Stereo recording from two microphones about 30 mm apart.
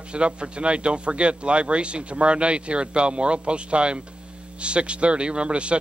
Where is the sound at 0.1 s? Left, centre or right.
Right.